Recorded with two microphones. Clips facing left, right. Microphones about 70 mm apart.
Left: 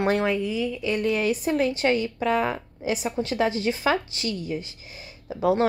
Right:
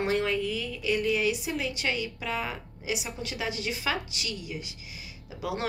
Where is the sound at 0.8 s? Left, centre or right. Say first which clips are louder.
Left 1 dB; left.